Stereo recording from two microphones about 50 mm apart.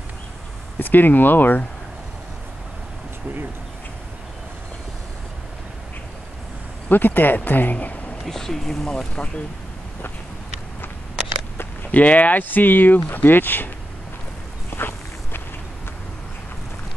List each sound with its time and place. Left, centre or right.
0.7 s speech: left
6.9 s speech: left
8.3 s speech: centre
8.9 s speech: left
11.9 s speech: left
14.8 s walk: left